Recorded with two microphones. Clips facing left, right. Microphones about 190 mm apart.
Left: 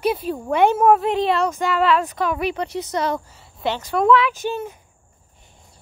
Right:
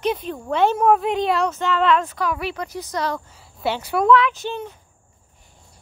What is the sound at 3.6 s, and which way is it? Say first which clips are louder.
Speech: even; 10° right (ahead or behind).